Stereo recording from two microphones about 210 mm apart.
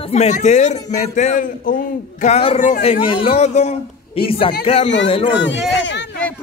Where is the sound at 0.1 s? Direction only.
30° left (ahead or behind).